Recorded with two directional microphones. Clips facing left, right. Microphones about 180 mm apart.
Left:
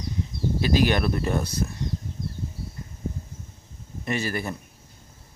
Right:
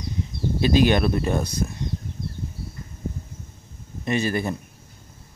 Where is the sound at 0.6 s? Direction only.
20° right (ahead or behind).